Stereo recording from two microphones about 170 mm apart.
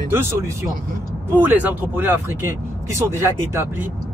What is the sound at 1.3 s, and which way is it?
Speech, 10° right (ahead or behind).